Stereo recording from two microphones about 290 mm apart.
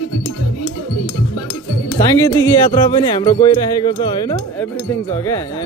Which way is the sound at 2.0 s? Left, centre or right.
Centre.